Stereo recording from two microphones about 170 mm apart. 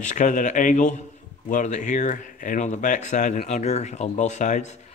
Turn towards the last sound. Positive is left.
turn(degrees=45)  # may be behind; listen again after turning